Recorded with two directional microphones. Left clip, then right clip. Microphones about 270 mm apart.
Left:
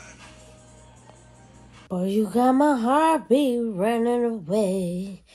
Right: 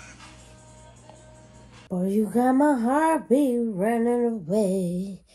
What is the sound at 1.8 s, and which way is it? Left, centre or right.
Speech, centre.